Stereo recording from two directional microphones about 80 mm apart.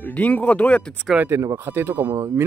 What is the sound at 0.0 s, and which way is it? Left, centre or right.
Speech, centre.